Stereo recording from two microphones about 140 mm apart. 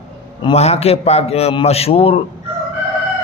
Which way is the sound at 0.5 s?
50° left (ahead or behind).